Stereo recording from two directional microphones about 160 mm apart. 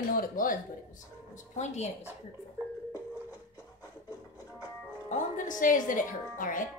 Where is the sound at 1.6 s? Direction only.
45° left (ahead or behind).